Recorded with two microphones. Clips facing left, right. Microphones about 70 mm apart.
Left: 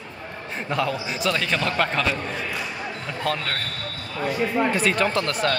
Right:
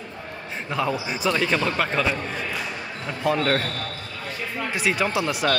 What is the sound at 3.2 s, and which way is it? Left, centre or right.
Speech, centre.